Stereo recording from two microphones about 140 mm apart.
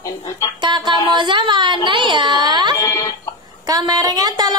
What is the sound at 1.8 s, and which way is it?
Music, 35° right (ahead or behind).